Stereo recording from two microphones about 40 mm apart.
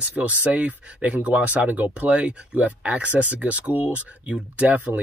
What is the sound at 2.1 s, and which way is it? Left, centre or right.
Speech, right.